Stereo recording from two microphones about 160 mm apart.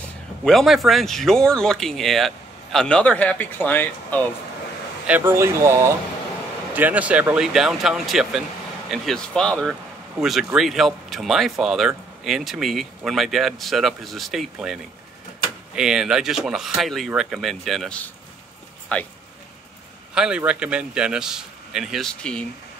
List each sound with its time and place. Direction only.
0.4 s speech: centre (ahead or behind)
5.0 s speech: 10° right (ahead or behind); by 19.1 s 10° left (ahead or behind)
20.2 s speech: 5° right (ahead or behind)